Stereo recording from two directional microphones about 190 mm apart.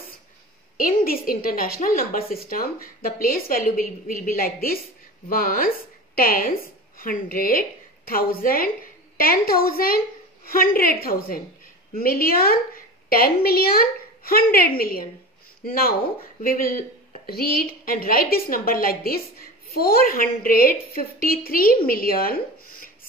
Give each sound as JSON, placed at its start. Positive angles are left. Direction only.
{"t": 0.7, "sound": "a woman's voice", "side_deg": 50}